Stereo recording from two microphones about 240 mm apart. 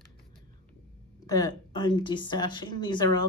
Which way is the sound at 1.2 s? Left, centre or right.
Centre.